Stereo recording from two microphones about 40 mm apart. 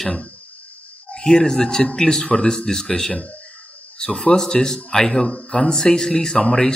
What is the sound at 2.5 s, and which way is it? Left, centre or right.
Speech, centre.